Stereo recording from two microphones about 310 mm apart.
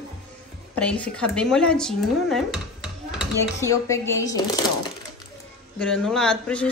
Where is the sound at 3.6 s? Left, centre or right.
Centre.